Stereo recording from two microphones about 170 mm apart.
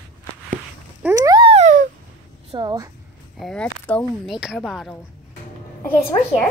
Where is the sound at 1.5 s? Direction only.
45° right (ahead or behind).